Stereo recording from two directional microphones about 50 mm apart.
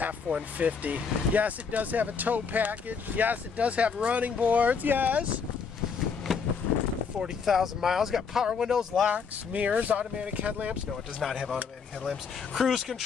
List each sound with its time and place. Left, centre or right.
0.0 s speech: right
6.3 s a sound: centre
7.4 s speech: centre
9.1 s speech: right
11.1 s speech: centre